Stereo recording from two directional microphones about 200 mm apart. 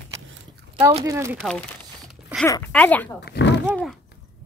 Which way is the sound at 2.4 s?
15° left (ahead or behind).